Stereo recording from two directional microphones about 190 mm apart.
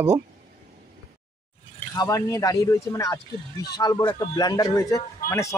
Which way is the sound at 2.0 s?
20° left (ahead or behind).